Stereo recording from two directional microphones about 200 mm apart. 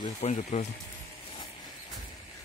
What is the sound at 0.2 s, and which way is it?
Speech, 35° left (ahead or behind).